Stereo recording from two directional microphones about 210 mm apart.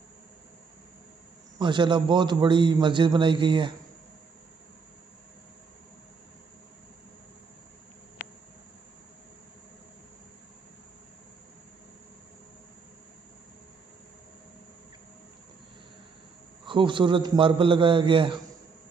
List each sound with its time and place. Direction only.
1.6 s a man's voice: 20° right (ahead or behind)
16.6 s a man's voice: 25° right (ahead or behind)